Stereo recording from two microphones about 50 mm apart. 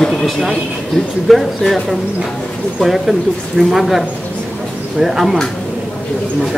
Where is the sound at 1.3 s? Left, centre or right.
Centre.